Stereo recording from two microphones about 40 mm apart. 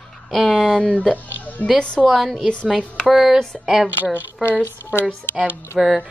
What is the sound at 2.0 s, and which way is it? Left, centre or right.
Speech, centre.